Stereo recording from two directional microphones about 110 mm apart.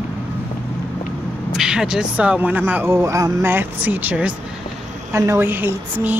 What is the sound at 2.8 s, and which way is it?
Speech, 25° right (ahead or behind).